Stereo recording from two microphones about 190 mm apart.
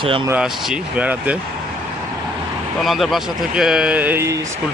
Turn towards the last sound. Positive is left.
turn(degrees=-10)  # may be behind; listen again after turning